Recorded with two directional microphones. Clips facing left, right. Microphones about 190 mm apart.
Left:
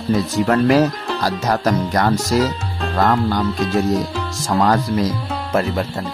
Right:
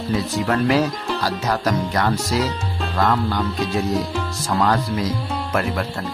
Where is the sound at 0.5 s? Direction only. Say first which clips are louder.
Left 4 dB; 45° left (ahead or behind).